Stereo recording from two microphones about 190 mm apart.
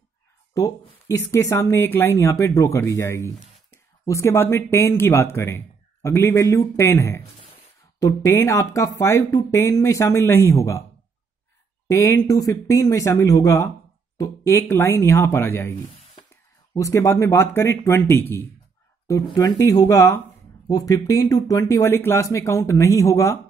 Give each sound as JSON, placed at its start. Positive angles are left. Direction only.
{"t": 0.6, "sound": "speech", "side_deg": 20}
{"t": 11.9, "sound": "speech", "side_deg": 15}
{"t": 16.7, "sound": "speech", "side_deg": 15}